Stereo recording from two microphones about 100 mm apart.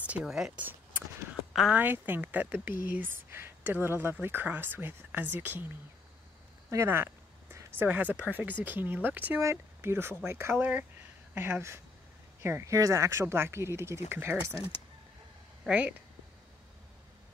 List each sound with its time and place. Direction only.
0.0 s speech: 10° right (ahead or behind)
1.7 s speech: 20° right (ahead or behind)
6.7 s speech: 25° right (ahead or behind)
15.6 s speech: 10° right (ahead or behind)